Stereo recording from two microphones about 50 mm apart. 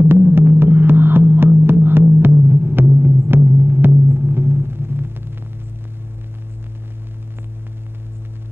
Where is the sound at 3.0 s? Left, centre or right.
Right.